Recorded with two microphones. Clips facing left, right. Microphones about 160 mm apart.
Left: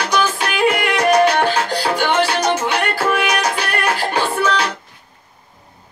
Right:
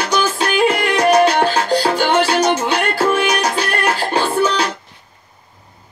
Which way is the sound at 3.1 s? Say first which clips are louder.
Right 2 dB; 30° right (ahead or behind).